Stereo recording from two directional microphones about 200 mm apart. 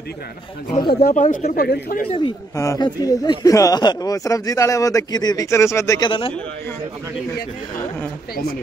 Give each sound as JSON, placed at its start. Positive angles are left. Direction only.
{"t": 0.7, "sound": "speech", "side_deg": 25}
{"t": 1.0, "sound": "speech", "side_deg": 40}
{"t": 2.0, "sound": "speech", "side_deg": 25}